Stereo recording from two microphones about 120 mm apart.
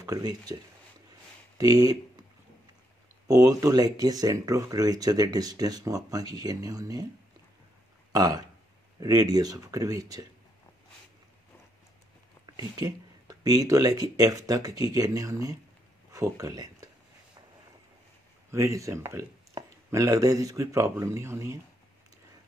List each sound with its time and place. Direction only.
0.0 s speech: 30° right (ahead or behind)
1.6 s speech: 30° right (ahead or behind)
3.3 s speech: 30° right (ahead or behind)
8.1 s speech: 35° right (ahead or behind)
12.5 s speech: 30° right (ahead or behind)
18.5 s speech: 25° right (ahead or behind)